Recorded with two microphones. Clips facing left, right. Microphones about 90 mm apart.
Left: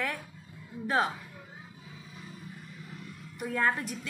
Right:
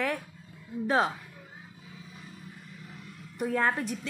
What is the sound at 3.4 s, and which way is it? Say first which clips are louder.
Speech: right 2 dB; 30° right (ahead or behind).